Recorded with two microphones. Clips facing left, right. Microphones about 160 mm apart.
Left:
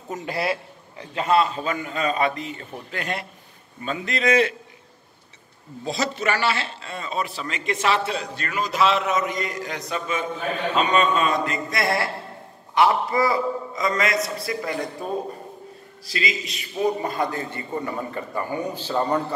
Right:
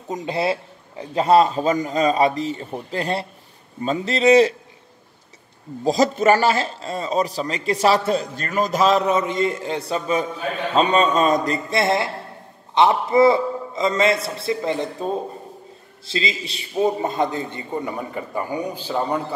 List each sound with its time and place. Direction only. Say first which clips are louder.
0.1 s a man's voice: right 4 dB; 20° right (ahead or behind)
5.9 s a man's voice: right 9 dB; 45° right (ahead or behind); by 15.0 s 25° right (ahead or behind)
16.1 s a man's voice: right 2 dB; 25° right (ahead or behind); by 19.2 s 10° right (ahead or behind)